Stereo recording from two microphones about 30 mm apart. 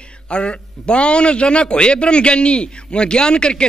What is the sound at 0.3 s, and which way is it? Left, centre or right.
A man's voice, left.